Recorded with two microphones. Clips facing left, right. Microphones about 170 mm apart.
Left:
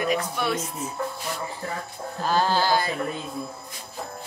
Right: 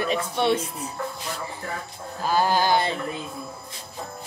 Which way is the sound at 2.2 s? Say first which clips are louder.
Right 1 dB; 10° right (ahead or behind).